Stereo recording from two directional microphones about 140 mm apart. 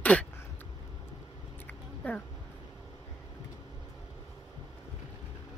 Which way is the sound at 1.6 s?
10° left (ahead or behind).